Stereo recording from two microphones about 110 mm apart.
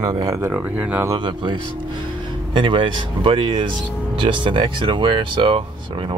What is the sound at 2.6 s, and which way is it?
Speech, 50° right (ahead or behind).